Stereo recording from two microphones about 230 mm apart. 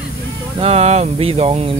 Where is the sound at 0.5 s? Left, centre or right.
Right.